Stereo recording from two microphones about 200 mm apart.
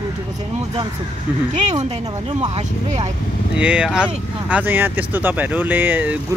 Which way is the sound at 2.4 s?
35° right (ahead or behind).